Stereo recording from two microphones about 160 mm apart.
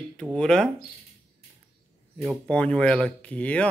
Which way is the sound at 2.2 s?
5° left (ahead or behind).